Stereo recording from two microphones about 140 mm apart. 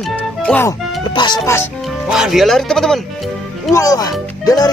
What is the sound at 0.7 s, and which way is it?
Speech, 30° left (ahead or behind).